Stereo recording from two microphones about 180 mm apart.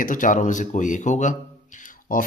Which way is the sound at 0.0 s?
45° left (ahead or behind).